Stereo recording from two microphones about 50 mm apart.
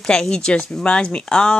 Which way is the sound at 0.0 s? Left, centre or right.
Centre.